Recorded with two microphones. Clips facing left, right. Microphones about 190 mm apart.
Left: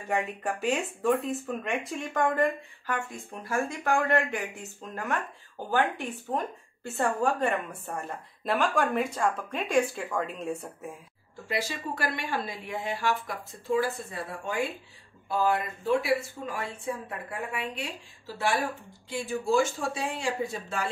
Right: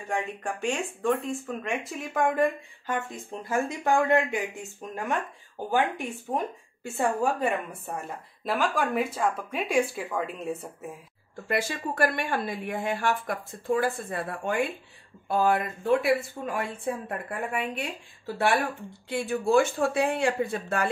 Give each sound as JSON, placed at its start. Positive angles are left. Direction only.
{"t": 0.1, "sound": "speech", "side_deg": 5}
{"t": 3.4, "sound": "a woman's voice", "side_deg": -20}
{"t": 11.4, "sound": "speech", "side_deg": -55}